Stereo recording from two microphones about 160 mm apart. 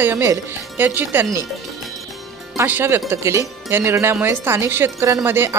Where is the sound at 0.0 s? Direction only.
15° right (ahead or behind).